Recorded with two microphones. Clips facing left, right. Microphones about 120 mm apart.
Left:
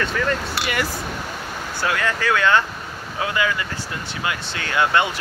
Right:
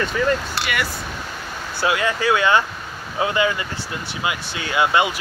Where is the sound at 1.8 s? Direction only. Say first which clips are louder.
Right 3 dB; 15° right (ahead or behind).